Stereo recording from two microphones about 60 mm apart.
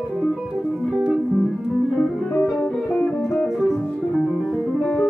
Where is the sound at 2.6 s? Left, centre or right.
Left.